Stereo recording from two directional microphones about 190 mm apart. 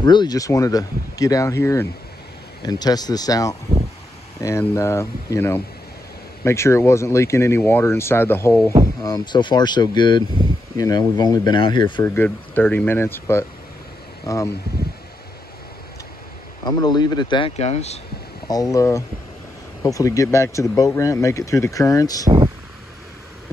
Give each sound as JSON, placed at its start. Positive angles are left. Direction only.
{"t": 0.0, "sound": "speech", "side_deg": 25}
{"t": 12.1, "sound": "speech", "side_deg": 10}
{"t": 16.6, "sound": "speech", "side_deg": 20}
{"t": 18.5, "sound": "speech", "side_deg": 20}